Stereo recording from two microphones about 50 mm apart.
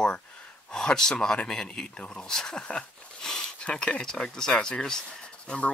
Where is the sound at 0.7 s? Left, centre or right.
Centre.